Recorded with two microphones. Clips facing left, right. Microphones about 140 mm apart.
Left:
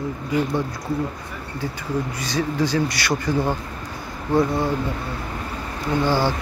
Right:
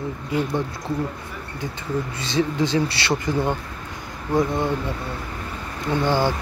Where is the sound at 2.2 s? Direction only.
25° right (ahead or behind).